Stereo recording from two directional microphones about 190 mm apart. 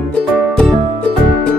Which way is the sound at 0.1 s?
5° left (ahead or behind).